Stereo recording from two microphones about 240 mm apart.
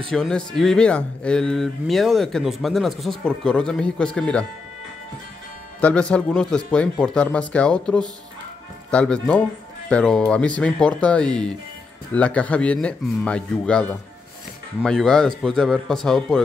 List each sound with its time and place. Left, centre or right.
0.1 s speech: centre
5.8 s speech: centre